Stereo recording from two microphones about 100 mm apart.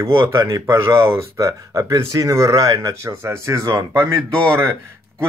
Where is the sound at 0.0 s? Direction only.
30° right (ahead or behind).